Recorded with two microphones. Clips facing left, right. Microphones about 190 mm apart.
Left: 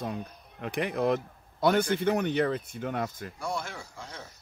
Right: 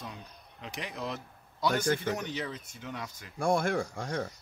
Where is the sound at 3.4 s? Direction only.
55° right (ahead or behind).